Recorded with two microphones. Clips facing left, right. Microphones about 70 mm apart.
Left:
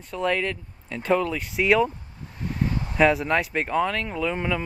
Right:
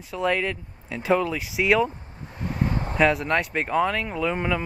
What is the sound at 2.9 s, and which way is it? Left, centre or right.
Speech, centre.